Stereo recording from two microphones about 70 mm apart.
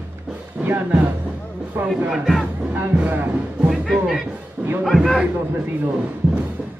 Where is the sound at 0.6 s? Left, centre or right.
Right.